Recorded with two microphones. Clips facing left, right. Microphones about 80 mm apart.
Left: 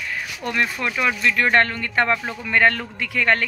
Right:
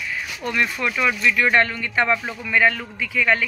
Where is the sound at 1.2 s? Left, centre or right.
Left.